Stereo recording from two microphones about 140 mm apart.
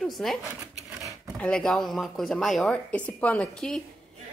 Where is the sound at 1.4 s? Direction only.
5° left (ahead or behind).